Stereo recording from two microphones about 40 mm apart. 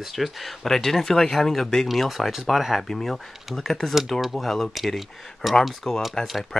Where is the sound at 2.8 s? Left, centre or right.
Centre.